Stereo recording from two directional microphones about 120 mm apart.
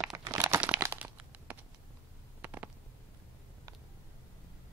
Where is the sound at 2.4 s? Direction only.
15° right (ahead or behind).